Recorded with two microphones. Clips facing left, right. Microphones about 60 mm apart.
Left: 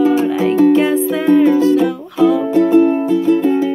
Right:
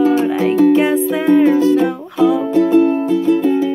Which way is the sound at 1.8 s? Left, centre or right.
Right.